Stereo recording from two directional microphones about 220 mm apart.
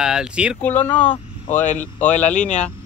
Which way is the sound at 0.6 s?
10° left (ahead or behind).